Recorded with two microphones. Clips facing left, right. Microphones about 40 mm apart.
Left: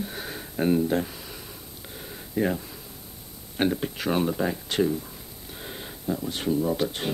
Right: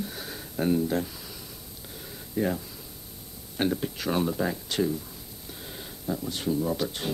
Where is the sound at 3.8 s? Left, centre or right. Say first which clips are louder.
Left 2 dB; left.